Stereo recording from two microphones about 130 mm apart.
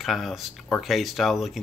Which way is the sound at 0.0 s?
Centre (ahead or behind).